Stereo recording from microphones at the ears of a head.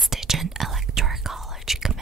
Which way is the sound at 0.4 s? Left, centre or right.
Right.